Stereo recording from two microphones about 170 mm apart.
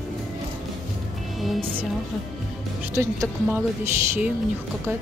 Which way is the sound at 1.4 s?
Centre (ahead or behind).